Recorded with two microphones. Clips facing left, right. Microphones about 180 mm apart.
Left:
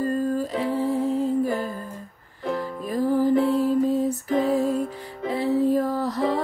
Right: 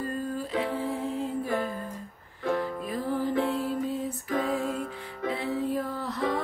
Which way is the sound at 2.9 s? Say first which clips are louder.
Left 10 dB; 40° left (ahead or behind).